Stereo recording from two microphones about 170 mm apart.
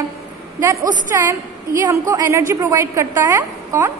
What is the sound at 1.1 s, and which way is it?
A woman's voice, 15° right (ahead or behind).